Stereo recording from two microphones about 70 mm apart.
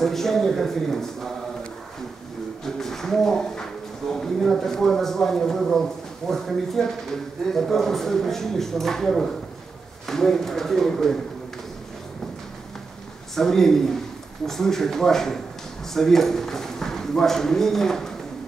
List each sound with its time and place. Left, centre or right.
0.0 s speech: centre
2.6 s a sound: centre
6.3 s speech: centre
13.3 s a man's voice: centre